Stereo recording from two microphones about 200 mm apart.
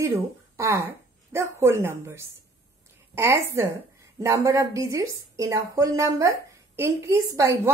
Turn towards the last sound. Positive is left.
turn(degrees=-15)  # may be behind; listen again after turning